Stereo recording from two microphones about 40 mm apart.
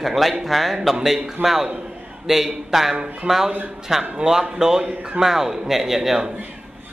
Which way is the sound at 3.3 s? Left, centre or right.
Right.